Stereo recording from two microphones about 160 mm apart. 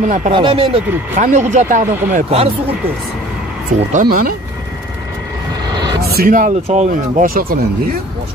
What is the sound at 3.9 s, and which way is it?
Speech, 55° right (ahead or behind).